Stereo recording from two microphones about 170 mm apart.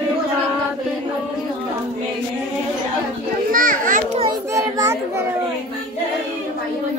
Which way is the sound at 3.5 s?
55° right (ahead or behind).